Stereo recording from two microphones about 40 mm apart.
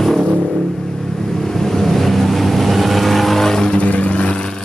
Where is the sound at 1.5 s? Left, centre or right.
Centre.